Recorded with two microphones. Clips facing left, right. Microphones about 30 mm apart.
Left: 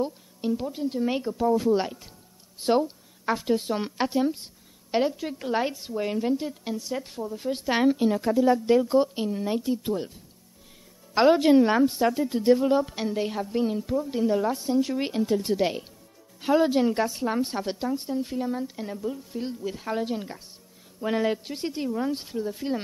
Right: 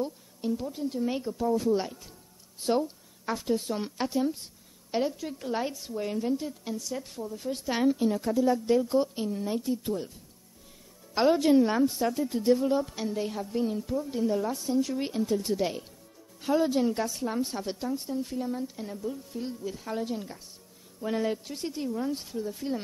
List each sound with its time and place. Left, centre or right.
0.0 s a woman's voice: left
11.1 s a woman's voice: left